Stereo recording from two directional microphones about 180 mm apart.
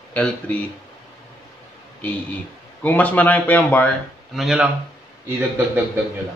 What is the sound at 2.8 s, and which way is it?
A man's voice, 10° left (ahead or behind).